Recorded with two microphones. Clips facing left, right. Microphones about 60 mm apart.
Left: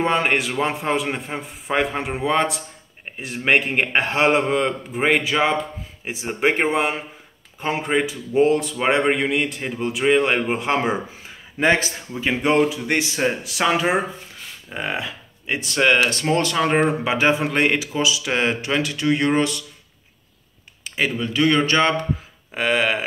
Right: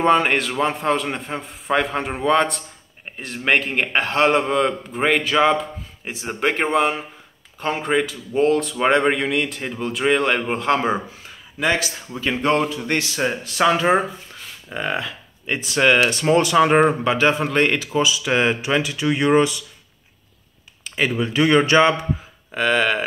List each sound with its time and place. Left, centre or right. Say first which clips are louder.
0.0 s a man's voice: right 3 dB; centre
6.4 s a man's voice: even; centre
11.6 s a man's voice: left 2 dB; left
12.2 s a man's voice: left 1 dB; centre
17.0 s a man's voice: right 1 dB; centre
20.8 s a sound: right 1 dB; centre
21.1 s speech: right 3 dB; centre
22.5 s a man's voice: right 1 dB; centre